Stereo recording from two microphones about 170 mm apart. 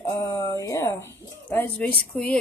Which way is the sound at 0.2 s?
15° left (ahead or behind).